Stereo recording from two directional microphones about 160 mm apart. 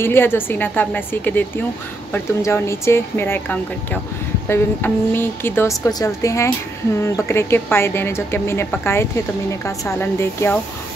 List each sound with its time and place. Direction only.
0.0 s a woman's voice: 15° left (ahead or behind)